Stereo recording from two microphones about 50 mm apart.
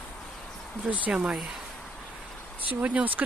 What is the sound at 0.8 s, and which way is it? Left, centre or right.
Speech, right.